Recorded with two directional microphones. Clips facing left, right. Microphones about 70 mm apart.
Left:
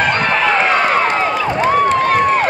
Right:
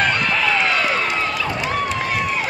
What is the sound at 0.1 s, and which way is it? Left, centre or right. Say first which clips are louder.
Run: left 5 dB; left.